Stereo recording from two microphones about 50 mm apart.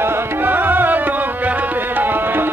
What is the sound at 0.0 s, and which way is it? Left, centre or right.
Music, right.